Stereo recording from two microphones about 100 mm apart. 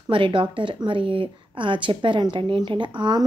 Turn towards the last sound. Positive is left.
turn(degrees=-50)  # may be behind; listen again after turning